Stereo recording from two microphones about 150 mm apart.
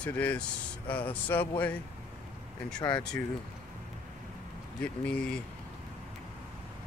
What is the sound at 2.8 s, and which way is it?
Speech, 20° left (ahead or behind).